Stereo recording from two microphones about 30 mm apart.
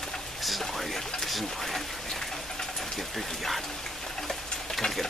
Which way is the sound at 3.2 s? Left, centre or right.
Centre.